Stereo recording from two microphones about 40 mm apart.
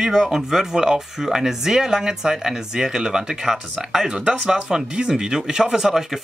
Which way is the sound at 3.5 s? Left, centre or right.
Centre.